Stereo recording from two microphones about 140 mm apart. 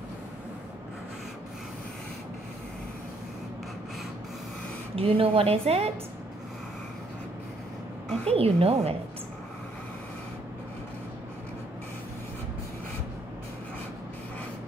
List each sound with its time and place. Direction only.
4.9 s a woman's voice: 40° right (ahead or behind)
8.3 s a woman's voice: 45° right (ahead or behind)